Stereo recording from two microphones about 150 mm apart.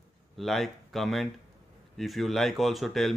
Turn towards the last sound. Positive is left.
turn(degrees=0)  # may be behind; listen again after turning